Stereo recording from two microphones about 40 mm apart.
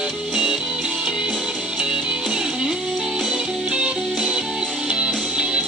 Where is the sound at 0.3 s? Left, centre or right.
Centre.